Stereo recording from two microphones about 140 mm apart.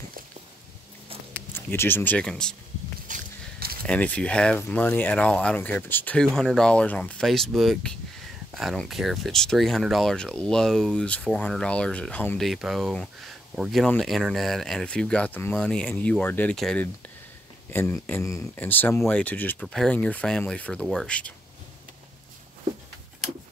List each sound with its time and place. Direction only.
1.5 s speech: 15° left (ahead or behind)
3.1 s a sound: 90° right
3.8 s speech: 10° left (ahead or behind)
12.4 s speech: centre (ahead or behind)
17.6 s speech: 15° left (ahead or behind)